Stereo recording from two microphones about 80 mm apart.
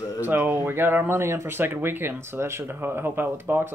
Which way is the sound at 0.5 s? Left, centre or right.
Right.